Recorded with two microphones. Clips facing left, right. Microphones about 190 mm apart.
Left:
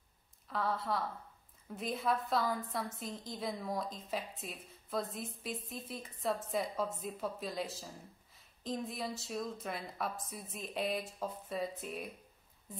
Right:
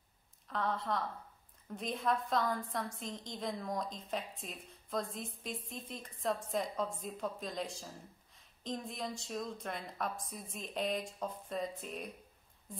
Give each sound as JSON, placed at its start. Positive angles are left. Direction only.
{"t": 0.5, "sound": "a woman's voice", "side_deg": 5}